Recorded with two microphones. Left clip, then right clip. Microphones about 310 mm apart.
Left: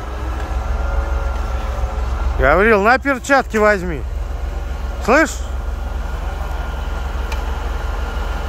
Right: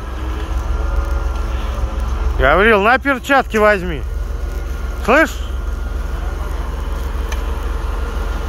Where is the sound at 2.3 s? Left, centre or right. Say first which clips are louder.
Right 1 dB; centre.